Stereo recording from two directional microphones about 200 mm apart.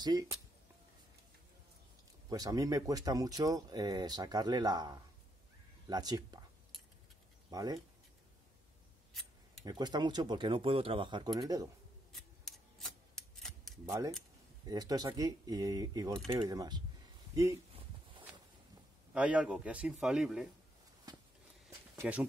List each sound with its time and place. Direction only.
0.0 s speech: 20° right (ahead or behind)
2.2 s speech: 20° right (ahead or behind)
7.5 s speech: 20° right (ahead or behind)
9.7 s speech: 20° right (ahead or behind)
12.1 s scissors: centre (ahead or behind)
14.7 s speech: 20° right (ahead or behind)
19.1 s a man's voice: 5° right (ahead or behind)
21.1 s a sound: 20° right (ahead or behind)
21.9 s speech: 5° right (ahead or behind)